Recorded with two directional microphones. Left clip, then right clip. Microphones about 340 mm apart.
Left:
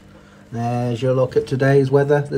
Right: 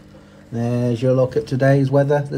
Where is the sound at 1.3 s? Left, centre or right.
Centre.